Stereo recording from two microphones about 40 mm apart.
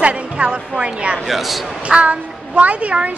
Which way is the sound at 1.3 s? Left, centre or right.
Centre.